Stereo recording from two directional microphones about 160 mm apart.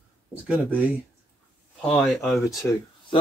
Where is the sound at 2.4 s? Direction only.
20° left (ahead or behind).